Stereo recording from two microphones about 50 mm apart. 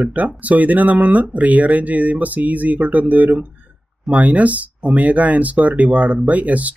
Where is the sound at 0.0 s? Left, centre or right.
Right.